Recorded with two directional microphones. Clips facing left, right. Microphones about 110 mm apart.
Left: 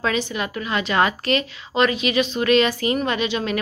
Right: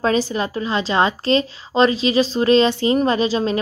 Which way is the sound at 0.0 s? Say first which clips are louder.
Right 5 dB; 35° right (ahead or behind).